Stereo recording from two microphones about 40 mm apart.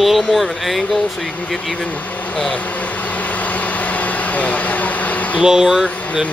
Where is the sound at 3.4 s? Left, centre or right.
Left.